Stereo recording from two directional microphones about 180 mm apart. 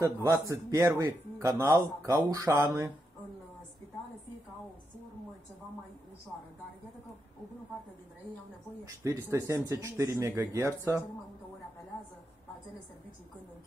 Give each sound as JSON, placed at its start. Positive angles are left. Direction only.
{"t": 0.0, "sound": "a man's voice", "side_deg": -15}
{"t": 8.8, "sound": "a man's voice", "side_deg": -15}